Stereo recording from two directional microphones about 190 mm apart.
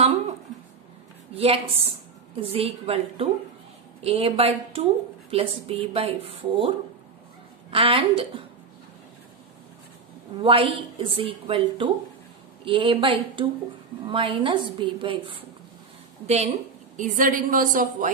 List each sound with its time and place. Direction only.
1.3 s speech: 30° right (ahead or behind)
7.7 s a woman's voice: 30° right (ahead or behind)
10.4 s a woman's voice: 30° right (ahead or behind); by 18.1 s 45° right (ahead or behind)